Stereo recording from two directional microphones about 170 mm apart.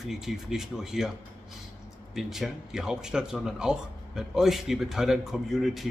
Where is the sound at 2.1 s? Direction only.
Centre (ahead or behind).